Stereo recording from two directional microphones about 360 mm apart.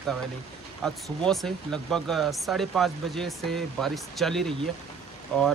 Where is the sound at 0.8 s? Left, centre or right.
Centre.